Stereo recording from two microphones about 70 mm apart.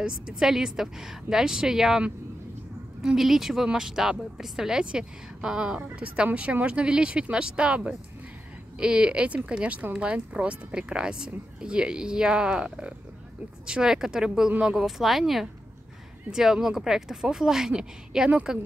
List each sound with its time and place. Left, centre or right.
0.0 s speech: centre